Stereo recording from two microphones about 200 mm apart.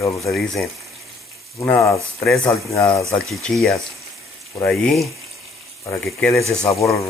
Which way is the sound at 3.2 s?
Centre (ahead or behind).